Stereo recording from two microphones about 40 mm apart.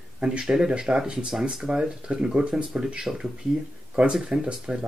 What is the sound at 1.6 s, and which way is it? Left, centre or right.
Speech, right.